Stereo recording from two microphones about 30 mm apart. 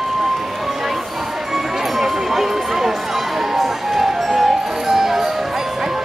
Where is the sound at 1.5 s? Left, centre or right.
Centre.